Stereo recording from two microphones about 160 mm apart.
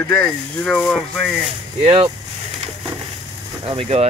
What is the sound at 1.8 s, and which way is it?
Speech, 35° right (ahead or behind).